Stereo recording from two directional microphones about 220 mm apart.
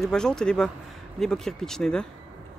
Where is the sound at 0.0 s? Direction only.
5° left (ahead or behind).